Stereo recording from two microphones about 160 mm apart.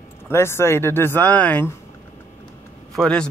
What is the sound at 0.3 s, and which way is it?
Speech, 15° left (ahead or behind).